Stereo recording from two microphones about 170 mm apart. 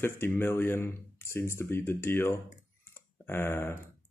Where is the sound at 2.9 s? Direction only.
15° left (ahead or behind).